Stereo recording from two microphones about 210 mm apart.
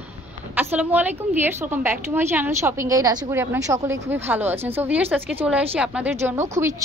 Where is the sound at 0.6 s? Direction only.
10° right (ahead or behind).